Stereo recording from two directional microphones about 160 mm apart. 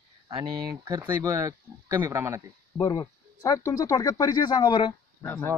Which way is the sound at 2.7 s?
20° left (ahead or behind).